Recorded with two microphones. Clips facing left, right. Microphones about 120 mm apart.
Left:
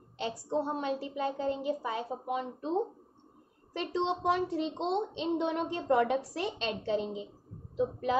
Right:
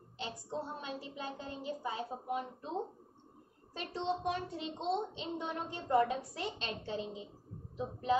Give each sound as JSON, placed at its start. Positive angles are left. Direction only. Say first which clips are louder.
{"t": 0.3, "sound": "a woman's voice", "louder": "left 9 dB", "side_deg": 85}
{"t": 3.7, "sound": "a woman's voice", "louder": "left 5 dB", "side_deg": 85}